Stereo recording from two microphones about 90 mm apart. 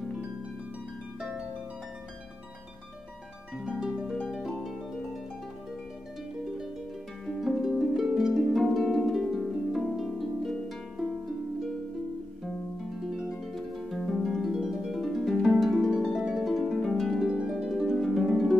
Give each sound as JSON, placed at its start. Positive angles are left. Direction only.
{"t": 3.5, "sound": "harp", "side_deg": -5}
{"t": 7.2, "sound": "harp", "side_deg": 0}
{"t": 13.0, "sound": "harp", "side_deg": -5}
{"t": 18.3, "sound": "music", "side_deg": -5}